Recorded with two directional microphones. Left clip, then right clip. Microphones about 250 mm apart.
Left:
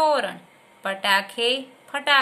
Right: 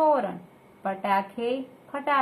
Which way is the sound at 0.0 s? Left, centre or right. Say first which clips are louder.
Left 2 dB; left.